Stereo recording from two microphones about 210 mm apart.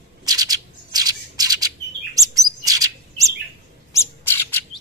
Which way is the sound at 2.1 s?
15° right (ahead or behind).